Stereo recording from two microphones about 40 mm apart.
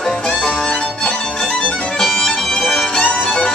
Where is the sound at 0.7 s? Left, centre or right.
Left.